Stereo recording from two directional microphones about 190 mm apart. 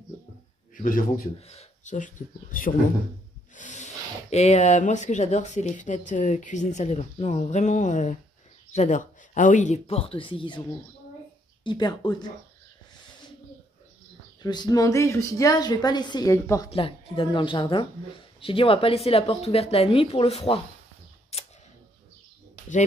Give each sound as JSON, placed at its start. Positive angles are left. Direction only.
{"t": 0.7, "sound": "a man's voice", "side_deg": 45}
{"t": 11.6, "sound": "a woman's voice", "side_deg": 25}
{"t": 14.4, "sound": "a woman's voice", "side_deg": 20}
{"t": 16.7, "sound": "a woman's voice", "side_deg": 30}
{"t": 21.3, "sound": "tick", "side_deg": 35}